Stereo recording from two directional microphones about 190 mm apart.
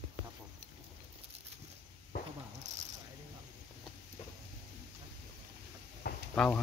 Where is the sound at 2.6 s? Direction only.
35° right (ahead or behind).